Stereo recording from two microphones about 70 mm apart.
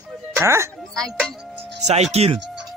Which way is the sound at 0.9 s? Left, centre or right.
Centre.